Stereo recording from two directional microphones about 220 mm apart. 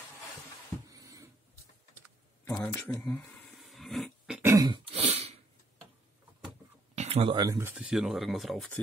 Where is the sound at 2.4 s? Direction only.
10° left (ahead or behind).